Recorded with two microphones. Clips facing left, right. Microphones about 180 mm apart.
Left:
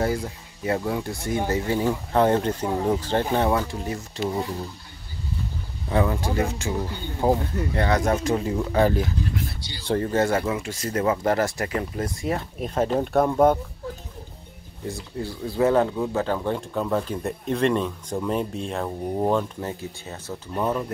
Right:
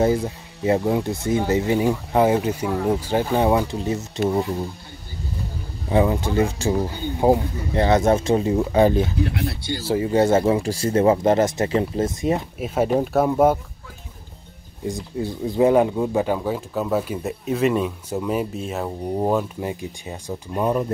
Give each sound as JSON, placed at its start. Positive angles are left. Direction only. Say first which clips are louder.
{"t": 0.0, "sound": "speech", "louder": "right 6 dB", "side_deg": -20}
{"t": 5.9, "sound": "speech", "louder": "right 4 dB", "side_deg": -20}
{"t": 9.2, "sound": "speech", "louder": "right 5 dB", "side_deg": -70}
{"t": 9.8, "sound": "speech", "louder": "right 3 dB", "side_deg": -10}
{"t": 10.4, "sound": "speech", "louder": "right 7 dB", "side_deg": -35}
{"t": 12.5, "sound": "speech", "louder": "right 3 dB", "side_deg": -5}
{"t": 14.9, "sound": "speech", "louder": "right 5 dB", "side_deg": -20}